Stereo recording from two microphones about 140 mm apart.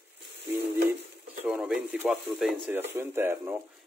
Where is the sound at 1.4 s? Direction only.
5° right (ahead or behind).